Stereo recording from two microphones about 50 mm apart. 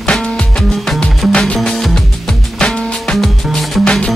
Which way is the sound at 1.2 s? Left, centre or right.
Centre.